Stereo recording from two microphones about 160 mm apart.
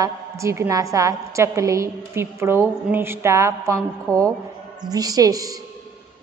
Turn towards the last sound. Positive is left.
turn(degrees=-20)  # may be behind; listen again after turning